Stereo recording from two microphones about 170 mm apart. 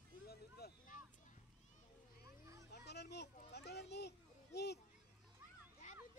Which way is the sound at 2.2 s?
20° right (ahead or behind).